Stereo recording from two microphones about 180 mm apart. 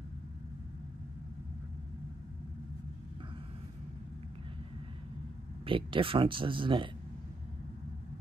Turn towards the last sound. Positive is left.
turn(degrees=-25)  # may be behind; listen again after turning